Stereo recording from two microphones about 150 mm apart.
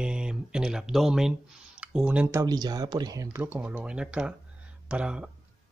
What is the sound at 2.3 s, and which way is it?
Speech, 20° right (ahead or behind).